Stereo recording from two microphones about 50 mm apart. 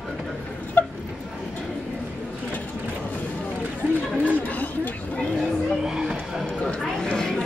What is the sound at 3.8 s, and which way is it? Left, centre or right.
Chatter, right.